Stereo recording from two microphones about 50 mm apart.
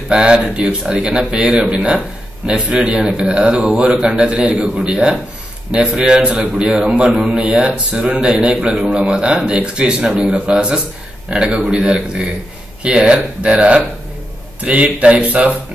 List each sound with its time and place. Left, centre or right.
0.1 s speech: centre
7.3 s speech: right